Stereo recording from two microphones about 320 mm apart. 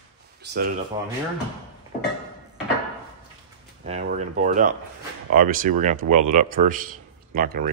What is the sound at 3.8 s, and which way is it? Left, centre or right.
Speech, right.